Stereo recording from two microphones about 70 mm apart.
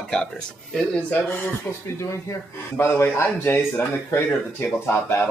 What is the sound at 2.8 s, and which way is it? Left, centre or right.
Speech, left.